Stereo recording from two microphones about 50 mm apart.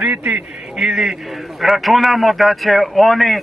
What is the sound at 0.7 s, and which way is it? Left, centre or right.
A man's voice, centre.